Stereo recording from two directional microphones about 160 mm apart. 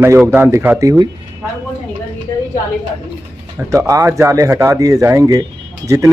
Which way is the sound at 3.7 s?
20° right (ahead or behind).